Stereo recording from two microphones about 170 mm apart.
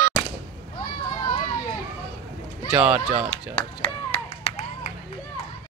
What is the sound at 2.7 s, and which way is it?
Speech, 5° right (ahead or behind).